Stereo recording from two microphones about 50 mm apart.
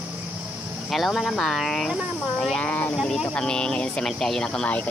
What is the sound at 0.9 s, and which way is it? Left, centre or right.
Speech, centre.